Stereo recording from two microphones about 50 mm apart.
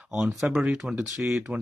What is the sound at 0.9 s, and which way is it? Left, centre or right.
Speech, centre.